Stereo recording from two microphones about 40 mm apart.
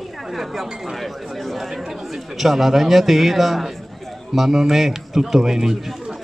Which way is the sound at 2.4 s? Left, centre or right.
Centre.